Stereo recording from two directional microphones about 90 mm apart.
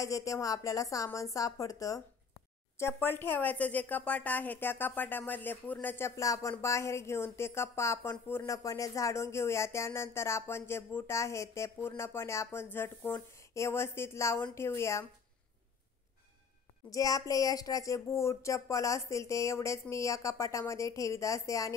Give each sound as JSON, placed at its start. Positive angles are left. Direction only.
{"t": 0.0, "sound": "speech", "side_deg": 35}
{"t": 2.8, "sound": "a woman's voice", "side_deg": 25}
{"t": 8.5, "sound": "a woman's voice", "side_deg": 40}
{"t": 16.9, "sound": "speech", "side_deg": 40}